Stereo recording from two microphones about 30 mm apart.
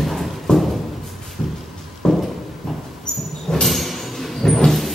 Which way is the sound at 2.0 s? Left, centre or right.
Left.